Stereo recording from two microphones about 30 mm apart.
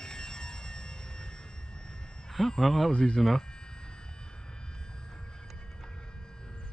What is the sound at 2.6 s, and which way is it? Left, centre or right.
Speech, centre.